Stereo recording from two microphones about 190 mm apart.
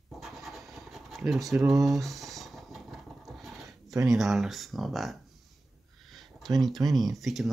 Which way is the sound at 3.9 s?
15° right (ahead or behind).